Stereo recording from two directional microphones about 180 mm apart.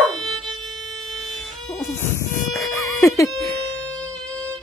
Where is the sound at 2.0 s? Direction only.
15° left (ahead or behind).